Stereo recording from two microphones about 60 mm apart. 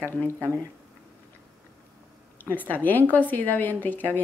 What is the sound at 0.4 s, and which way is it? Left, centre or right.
Speech, left.